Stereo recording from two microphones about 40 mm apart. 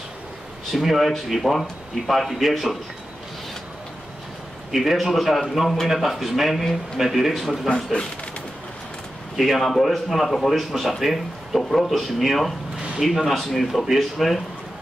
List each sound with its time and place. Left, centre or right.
0.7 s speech: centre
4.7 s speech: centre
7.7 s speech: left
9.4 s speech: centre